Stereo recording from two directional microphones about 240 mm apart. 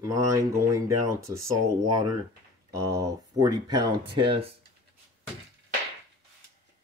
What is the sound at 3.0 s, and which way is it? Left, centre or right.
Speech, centre.